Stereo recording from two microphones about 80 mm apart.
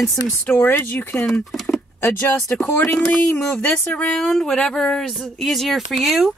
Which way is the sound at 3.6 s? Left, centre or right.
Left.